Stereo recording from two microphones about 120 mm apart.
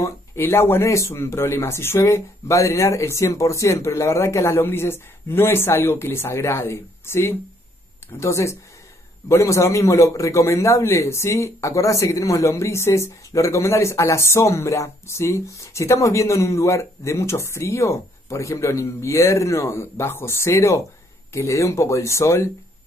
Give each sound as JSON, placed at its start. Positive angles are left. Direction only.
{"t": 0.0, "sound": "a man's voice", "side_deg": 20}